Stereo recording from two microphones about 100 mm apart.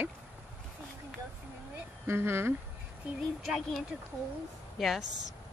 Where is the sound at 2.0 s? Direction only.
25° right (ahead or behind).